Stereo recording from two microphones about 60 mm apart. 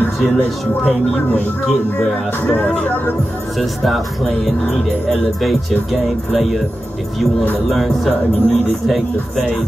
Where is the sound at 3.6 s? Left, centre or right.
Centre.